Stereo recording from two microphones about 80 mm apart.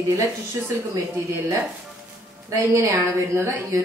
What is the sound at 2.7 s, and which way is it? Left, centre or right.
Speech, right.